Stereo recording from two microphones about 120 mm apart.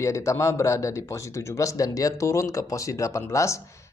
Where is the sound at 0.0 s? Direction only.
25° left (ahead or behind).